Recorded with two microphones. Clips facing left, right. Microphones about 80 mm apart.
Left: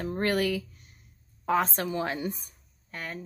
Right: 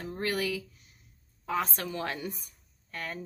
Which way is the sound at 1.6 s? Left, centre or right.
Left.